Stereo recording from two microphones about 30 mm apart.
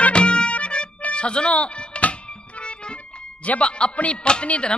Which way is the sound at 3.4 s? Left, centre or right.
Left.